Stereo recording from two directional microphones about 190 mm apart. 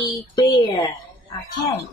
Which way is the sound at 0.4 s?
25° left (ahead or behind).